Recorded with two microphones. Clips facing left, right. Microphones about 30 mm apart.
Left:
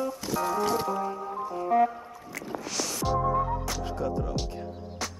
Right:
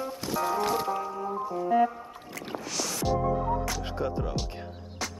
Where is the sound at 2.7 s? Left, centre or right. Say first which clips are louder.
Even; centre.